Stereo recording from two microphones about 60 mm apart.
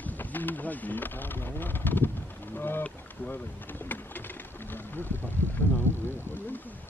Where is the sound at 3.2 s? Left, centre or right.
Left.